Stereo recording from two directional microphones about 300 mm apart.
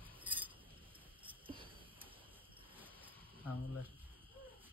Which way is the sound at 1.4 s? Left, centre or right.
Centre.